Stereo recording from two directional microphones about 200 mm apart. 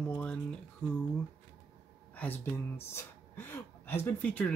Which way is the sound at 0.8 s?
10° left (ahead or behind).